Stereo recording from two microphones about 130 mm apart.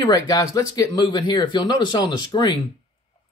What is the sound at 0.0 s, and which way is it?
Speech, 30° left (ahead or behind).